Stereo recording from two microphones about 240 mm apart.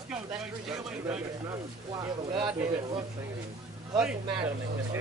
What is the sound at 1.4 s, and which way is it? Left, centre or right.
Speech, centre.